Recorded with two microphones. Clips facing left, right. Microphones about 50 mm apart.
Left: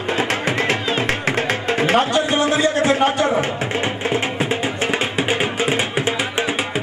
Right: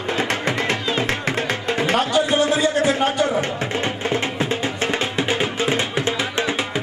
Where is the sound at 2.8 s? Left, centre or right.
Centre.